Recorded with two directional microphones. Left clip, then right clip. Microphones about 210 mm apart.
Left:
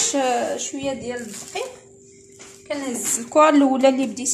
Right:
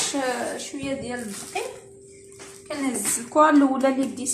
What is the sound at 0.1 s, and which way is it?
Speech, 50° left (ahead or behind).